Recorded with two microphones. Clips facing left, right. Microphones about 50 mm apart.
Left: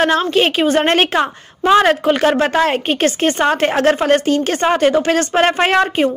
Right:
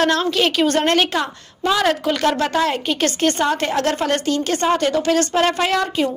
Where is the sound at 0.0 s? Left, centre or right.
Left.